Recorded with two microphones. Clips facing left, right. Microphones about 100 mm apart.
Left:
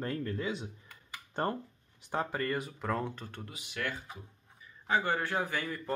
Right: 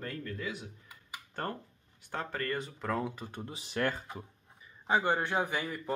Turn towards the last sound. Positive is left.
turn(degrees=-15)  # may be behind; listen again after turning